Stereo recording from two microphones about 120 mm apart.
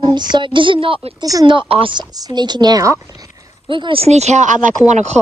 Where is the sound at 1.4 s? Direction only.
50° right (ahead or behind); by 3.0 s 30° right (ahead or behind).